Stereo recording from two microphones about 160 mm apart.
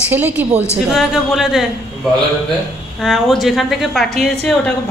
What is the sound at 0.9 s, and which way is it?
Speech, centre (ahead or behind).